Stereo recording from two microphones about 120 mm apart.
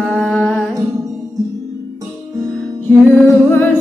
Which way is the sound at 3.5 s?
20° left (ahead or behind).